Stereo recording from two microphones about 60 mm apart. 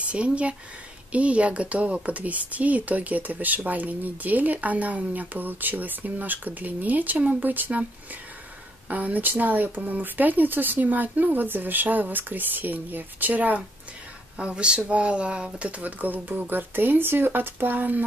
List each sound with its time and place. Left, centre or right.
0.0 s speech: right
8.8 s speech: right
14.4 s speech: centre
15.8 s speech: right